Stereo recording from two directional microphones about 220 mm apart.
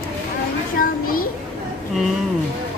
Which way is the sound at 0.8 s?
40° left (ahead or behind).